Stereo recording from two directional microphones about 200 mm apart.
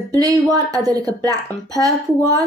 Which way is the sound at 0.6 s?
20° right (ahead or behind).